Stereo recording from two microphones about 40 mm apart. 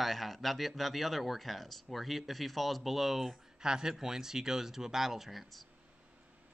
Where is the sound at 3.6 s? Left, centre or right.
Centre.